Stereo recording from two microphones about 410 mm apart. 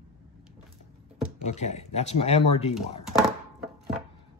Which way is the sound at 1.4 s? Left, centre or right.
Centre.